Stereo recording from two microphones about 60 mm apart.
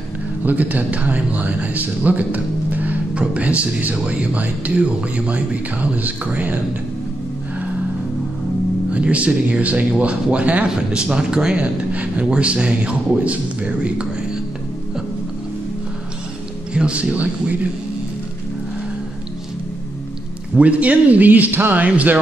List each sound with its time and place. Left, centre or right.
0.5 s speech: right
8.9 s speech: right
16.7 s speech: centre
20.5 s speech: right